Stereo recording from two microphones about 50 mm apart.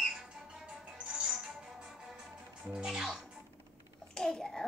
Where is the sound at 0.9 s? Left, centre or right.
Centre.